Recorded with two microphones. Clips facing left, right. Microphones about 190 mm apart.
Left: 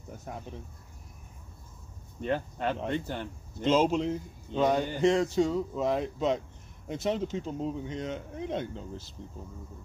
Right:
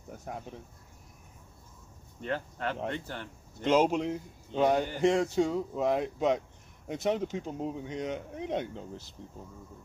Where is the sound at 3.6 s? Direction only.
15° right (ahead or behind).